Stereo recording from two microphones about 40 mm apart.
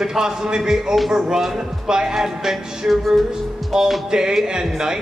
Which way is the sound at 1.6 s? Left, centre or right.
Centre.